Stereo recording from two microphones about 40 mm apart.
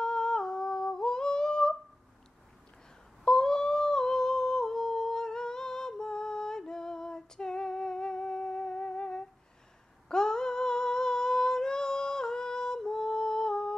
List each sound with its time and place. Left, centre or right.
0.0 s humming: centre
3.3 s humming: centre